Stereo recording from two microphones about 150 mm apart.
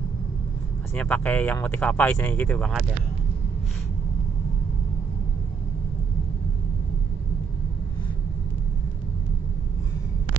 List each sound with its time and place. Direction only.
0.9 s speech: 10° left (ahead or behind)